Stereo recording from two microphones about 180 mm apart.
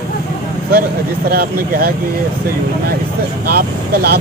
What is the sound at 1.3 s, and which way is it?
Speech, 55° right (ahead or behind).